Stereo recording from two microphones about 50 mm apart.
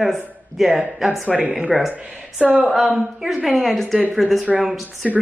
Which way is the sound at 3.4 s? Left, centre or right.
Centre.